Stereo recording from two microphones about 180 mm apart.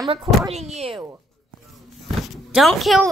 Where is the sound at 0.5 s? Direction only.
35° right (ahead or behind).